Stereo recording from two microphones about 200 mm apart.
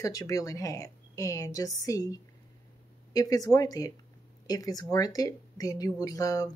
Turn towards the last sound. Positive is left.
turn(degrees=15)  # may be behind; listen again after turning